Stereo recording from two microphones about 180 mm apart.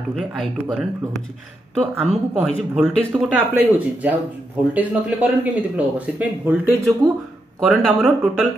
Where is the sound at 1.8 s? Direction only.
35° right (ahead or behind).